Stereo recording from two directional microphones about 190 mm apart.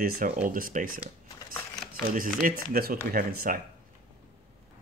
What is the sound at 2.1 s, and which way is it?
Speech, 45° right (ahead or behind).